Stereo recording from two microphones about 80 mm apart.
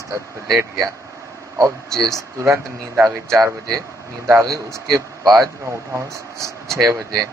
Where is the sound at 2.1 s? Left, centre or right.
Right.